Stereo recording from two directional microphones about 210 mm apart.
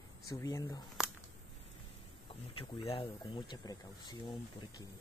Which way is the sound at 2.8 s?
25° left (ahead or behind).